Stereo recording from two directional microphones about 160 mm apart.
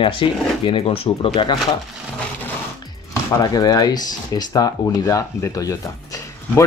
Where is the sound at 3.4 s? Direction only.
25° left (ahead or behind).